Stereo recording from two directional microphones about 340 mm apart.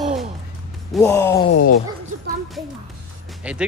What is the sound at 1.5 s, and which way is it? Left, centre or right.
Speech, left.